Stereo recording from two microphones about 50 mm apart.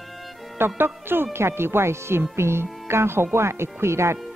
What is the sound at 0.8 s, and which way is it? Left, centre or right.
Speech, right.